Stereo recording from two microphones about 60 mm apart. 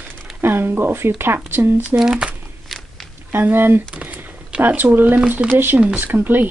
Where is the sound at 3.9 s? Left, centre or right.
Right.